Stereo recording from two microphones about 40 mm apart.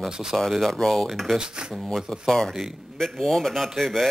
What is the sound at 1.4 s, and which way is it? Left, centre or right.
Speech, centre.